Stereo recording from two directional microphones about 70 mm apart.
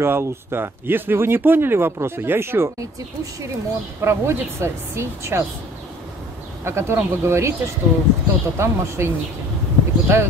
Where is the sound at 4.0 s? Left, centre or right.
Right.